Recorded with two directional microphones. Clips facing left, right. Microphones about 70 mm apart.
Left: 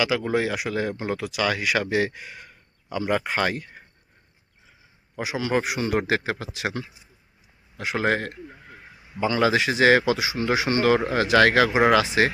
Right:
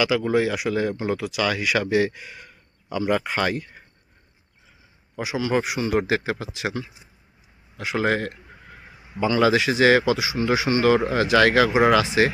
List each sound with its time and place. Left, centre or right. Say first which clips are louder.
0.3 s speech: right 3 dB; left
5.1 s a man's voice: right 1 dB; left